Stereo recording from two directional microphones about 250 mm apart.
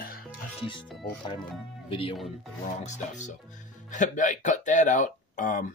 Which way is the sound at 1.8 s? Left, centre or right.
Left.